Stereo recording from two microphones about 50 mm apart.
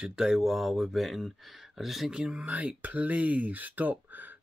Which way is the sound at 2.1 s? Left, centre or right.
Centre.